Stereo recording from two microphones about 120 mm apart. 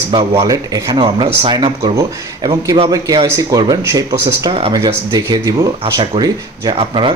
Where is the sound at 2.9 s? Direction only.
30° right (ahead or behind).